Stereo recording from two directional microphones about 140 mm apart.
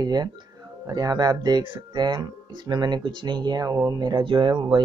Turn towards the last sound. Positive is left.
turn(degrees=-35)  # may be behind; listen again after turning